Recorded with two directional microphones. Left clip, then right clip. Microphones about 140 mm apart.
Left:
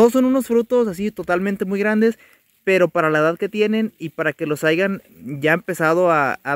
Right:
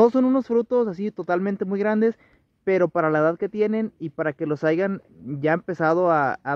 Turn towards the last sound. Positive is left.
turn(degrees=25)  # may be behind; listen again after turning